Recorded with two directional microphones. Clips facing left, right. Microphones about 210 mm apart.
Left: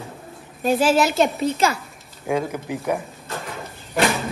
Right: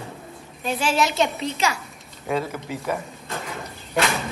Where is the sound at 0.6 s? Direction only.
45° left (ahead or behind).